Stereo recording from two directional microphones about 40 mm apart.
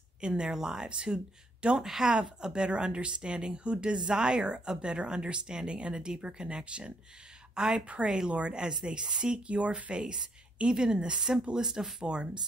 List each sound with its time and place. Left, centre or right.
0.2 s speech: centre
1.8 s speech: centre